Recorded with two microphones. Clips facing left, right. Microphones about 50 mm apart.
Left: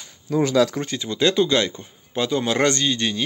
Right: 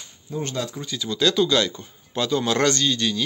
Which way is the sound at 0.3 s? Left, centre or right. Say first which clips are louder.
Left 10 dB; left.